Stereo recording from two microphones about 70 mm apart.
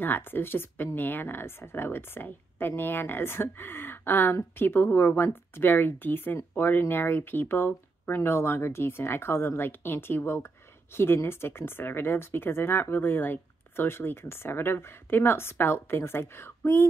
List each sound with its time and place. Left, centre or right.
0.0 s speech: left